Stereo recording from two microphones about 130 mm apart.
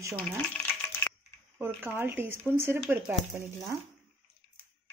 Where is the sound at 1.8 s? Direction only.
15° right (ahead or behind).